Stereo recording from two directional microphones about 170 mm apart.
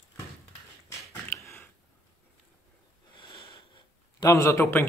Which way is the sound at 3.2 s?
30° left (ahead or behind).